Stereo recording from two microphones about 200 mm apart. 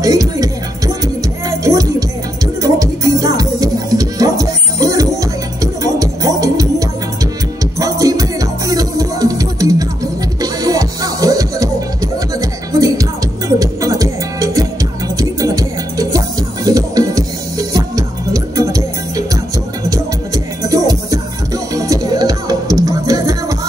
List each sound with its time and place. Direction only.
0.0 s music: 15° right (ahead or behind)
20.6 s music: 15° right (ahead or behind)